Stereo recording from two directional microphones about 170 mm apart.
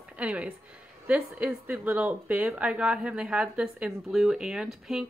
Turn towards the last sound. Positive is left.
turn(degrees=-5)  # may be behind; listen again after turning